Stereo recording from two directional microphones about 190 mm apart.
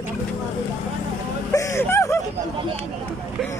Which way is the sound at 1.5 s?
15° left (ahead or behind).